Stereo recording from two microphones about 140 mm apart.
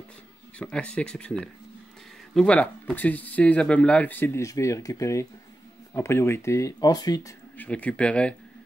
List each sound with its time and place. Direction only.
0.6 s speech: 5° left (ahead or behind); by 7.3 s 25° left (ahead or behind)
7.5 s speech: 10° left (ahead or behind)